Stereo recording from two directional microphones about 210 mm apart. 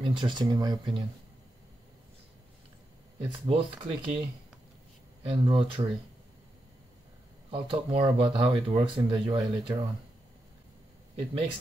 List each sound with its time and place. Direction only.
0.0 s speech: 20° right (ahead or behind)
3.2 s speech: 25° right (ahead or behind)
5.3 s speech: 25° right (ahead or behind)
7.5 s speech: 25° right (ahead or behind)